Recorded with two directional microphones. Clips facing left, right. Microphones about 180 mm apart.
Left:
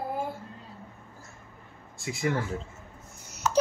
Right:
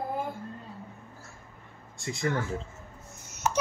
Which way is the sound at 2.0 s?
Centre (ahead or behind).